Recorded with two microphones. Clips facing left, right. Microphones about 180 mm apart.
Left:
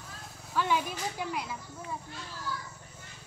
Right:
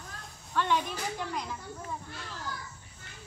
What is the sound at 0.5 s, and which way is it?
Speech, 5° left (ahead or behind).